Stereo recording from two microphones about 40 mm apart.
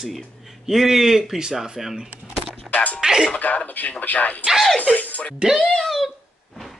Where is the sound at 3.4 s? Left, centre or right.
Left.